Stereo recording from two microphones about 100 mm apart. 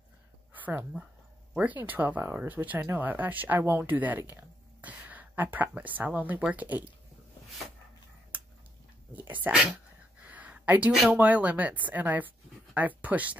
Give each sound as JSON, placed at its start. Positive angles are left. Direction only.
{"t": 0.5, "sound": "speech", "side_deg": -15}
{"t": 9.1, "sound": "a sound", "side_deg": -15}
{"t": 11.1, "sound": "speech", "side_deg": -15}